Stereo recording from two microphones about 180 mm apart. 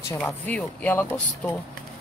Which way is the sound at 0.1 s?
10° left (ahead or behind).